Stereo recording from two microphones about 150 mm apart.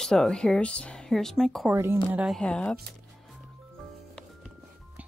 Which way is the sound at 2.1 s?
5° right (ahead or behind).